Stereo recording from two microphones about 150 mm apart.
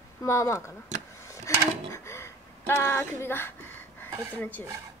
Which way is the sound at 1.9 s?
15° left (ahead or behind).